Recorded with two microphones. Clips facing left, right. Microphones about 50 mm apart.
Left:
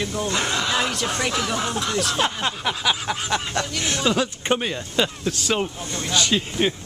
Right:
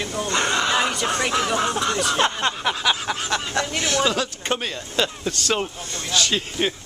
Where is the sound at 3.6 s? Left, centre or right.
Right.